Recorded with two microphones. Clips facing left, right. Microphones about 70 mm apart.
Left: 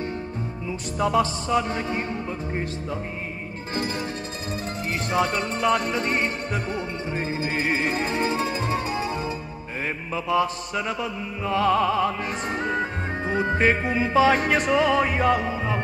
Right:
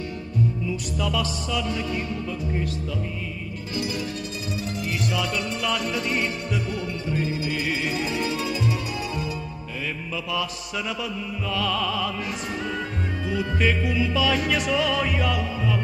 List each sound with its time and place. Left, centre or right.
0.7 s mantra: left
3.7 s mantra: left
4.5 s music: left
10.1 s mantra: left